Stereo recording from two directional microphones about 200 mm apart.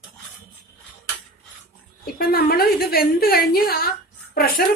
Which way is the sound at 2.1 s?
50° left (ahead or behind).